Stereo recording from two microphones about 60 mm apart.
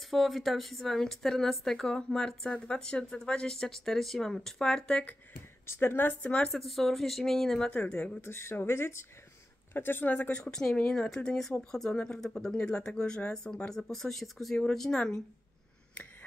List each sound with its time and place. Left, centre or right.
0.1 s speech: centre
5.7 s speech: left
6.2 s speech: centre
6.5 s speech: centre
7.7 s a woman's voice: left
8.2 s speech: left
10.4 s speech: centre